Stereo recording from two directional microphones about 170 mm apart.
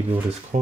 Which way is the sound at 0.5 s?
45° right (ahead or behind).